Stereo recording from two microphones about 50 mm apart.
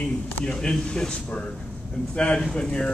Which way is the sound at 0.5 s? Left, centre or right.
Centre.